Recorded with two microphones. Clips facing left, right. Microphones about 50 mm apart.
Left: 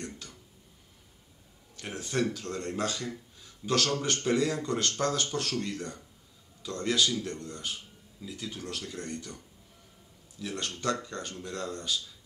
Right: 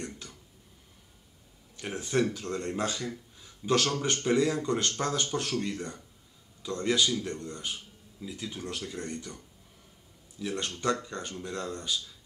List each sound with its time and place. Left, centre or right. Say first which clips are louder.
1.8 s speech: right 2 dB; centre
3.3 s a sound: right 2 dB; centre
4.2 s speech: right 3 dB; centre
10.4 s speech: right 2 dB; centre